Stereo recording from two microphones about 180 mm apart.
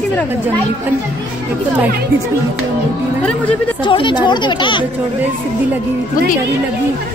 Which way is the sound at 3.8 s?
25° left (ahead or behind).